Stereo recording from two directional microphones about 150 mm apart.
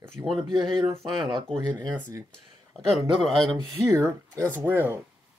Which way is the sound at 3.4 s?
25° right (ahead or behind).